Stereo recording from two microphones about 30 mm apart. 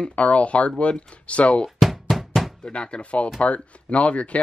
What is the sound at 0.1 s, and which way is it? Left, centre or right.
Speech, left.